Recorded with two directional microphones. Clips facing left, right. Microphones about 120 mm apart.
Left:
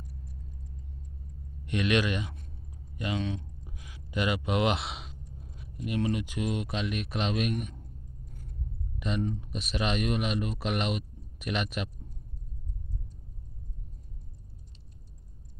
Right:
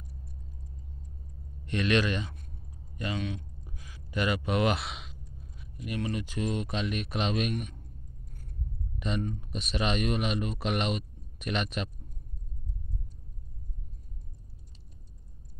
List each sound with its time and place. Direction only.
1.7 s speech: 10° left (ahead or behind)
3.6 s a sound: 15° left (ahead or behind)
5.9 s speech: 20° left (ahead or behind); by 7.6 s centre (ahead or behind)
9.0 s speech: 5° left (ahead or behind)